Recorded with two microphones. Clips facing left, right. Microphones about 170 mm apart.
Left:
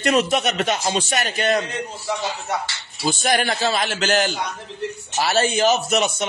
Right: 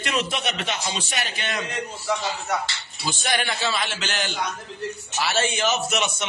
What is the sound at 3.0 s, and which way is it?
A man's voice, 45° left (ahead or behind).